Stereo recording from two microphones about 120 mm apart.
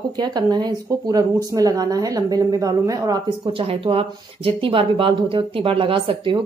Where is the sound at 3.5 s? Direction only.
50° right (ahead or behind).